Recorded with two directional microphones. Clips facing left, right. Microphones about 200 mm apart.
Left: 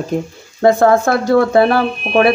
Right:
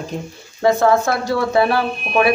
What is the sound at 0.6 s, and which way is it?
Speech, 50° left (ahead or behind).